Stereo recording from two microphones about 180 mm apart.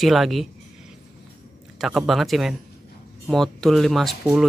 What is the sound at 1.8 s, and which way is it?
Speech, centre (ahead or behind).